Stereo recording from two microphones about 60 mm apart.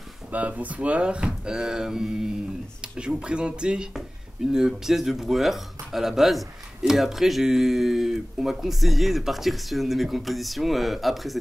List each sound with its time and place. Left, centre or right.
0.3 s speech: right; by 11.3 s centre